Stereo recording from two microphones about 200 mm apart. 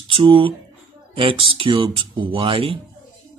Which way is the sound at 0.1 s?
25° right (ahead or behind).